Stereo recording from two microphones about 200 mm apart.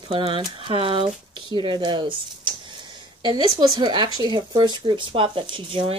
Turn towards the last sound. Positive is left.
turn(degrees=-25)  # may be behind; listen again after turning